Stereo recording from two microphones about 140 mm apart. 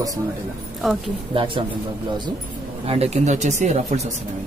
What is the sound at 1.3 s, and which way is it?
Speech, 35° right (ahead or behind).